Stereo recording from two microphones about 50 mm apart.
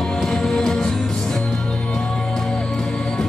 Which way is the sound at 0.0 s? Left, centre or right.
Centre.